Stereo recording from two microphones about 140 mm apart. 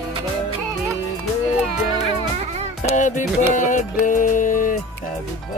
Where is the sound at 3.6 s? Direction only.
65° left (ahead or behind).